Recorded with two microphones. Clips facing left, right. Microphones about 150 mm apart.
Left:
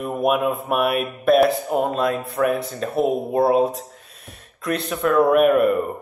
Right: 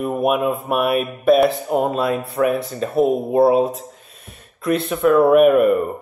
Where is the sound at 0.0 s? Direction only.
5° right (ahead or behind).